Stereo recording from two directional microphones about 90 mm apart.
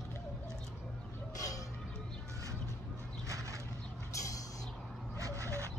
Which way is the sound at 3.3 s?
35° right (ahead or behind).